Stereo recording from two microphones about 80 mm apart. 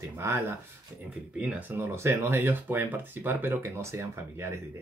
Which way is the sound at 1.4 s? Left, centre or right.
Centre.